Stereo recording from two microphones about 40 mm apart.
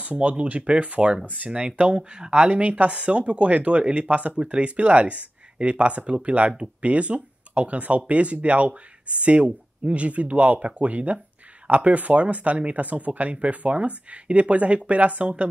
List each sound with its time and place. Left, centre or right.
0.1 s speech: right